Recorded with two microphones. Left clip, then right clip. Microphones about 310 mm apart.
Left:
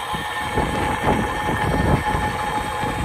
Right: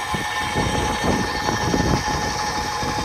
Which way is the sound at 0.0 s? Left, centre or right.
Centre.